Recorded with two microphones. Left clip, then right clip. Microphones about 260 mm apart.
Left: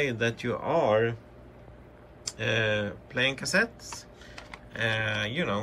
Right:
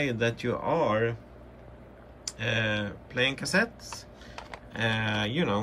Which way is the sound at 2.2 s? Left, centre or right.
Centre.